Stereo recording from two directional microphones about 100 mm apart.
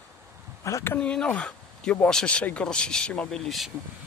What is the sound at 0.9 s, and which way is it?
Speech, 10° left (ahead or behind).